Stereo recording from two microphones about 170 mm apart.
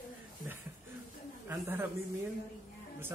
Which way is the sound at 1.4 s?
15° right (ahead or behind).